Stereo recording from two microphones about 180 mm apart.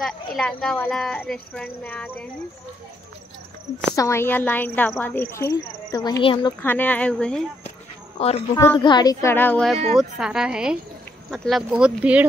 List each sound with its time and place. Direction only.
0.0 s speech: centre (ahead or behind)
3.9 s a child's voice: 15° left (ahead or behind)
6.6 s speech: 10° left (ahead or behind)
8.2 s a woman's voice: 35° left (ahead or behind)
8.7 s speech: 25° left (ahead or behind); by 12.3 s 5° right (ahead or behind)